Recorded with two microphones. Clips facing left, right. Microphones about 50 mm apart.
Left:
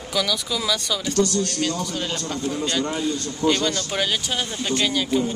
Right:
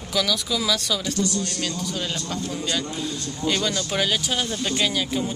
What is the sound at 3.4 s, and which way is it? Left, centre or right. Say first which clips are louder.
Speech: left 3 dB; centre.